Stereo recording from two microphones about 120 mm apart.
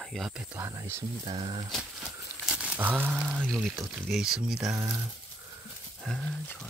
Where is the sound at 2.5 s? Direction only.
10° right (ahead or behind).